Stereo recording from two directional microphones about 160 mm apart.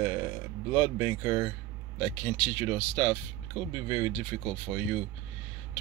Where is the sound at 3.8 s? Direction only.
20° right (ahead or behind).